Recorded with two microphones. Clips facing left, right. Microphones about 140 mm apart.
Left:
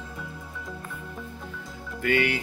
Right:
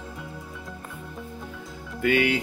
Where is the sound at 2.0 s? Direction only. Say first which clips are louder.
Right 3 dB; 15° right (ahead or behind).